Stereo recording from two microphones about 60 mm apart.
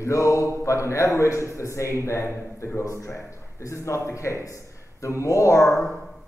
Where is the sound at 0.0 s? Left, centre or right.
Left.